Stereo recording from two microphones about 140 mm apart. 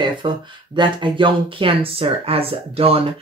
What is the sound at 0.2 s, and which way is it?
Speech, 35° right (ahead or behind).